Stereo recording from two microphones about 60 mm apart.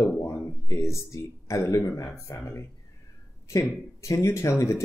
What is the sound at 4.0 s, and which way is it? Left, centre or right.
Speech, left.